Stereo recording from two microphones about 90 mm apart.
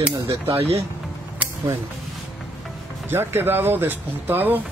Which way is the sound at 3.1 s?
25° right (ahead or behind).